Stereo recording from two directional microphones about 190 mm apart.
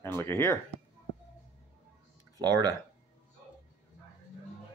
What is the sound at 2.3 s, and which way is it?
Speech, 20° right (ahead or behind).